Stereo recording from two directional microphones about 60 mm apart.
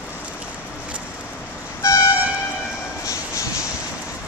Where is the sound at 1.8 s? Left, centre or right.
Left.